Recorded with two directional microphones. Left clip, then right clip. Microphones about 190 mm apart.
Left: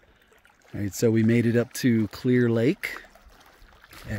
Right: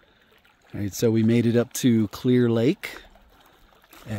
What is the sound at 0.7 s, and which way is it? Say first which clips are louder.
Speech: right 1 dB; 5° right (ahead or behind).